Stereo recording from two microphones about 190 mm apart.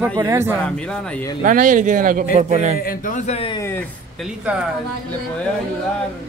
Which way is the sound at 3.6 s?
10° left (ahead or behind).